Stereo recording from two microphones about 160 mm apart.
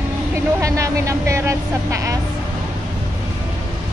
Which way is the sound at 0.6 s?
20° right (ahead or behind).